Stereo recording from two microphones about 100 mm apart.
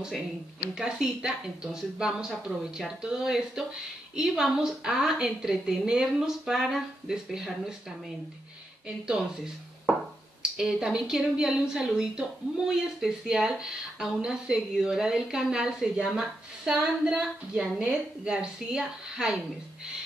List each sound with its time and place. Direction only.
0.7 s a woman's voice: 5° right (ahead or behind)
8.8 s a woman's voice: 10° right (ahead or behind)
10.4 s a woman's voice: 5° right (ahead or behind)